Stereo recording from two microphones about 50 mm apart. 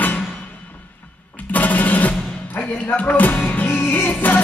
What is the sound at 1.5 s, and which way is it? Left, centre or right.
Music, left.